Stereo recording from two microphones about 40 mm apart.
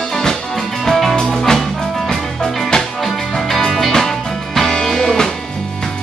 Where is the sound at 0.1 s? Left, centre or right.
Centre.